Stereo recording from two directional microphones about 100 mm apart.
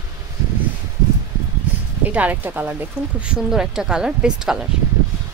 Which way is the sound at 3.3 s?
5° right (ahead or behind).